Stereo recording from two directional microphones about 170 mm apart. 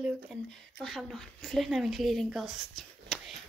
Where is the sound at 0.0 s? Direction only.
Centre (ahead or behind).